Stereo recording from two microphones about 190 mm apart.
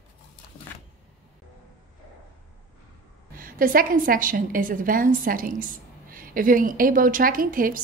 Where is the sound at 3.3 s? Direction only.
50° right (ahead or behind).